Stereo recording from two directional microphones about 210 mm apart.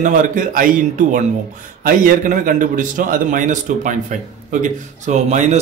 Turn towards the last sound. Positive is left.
turn(degrees=-35)  # may be behind; listen again after turning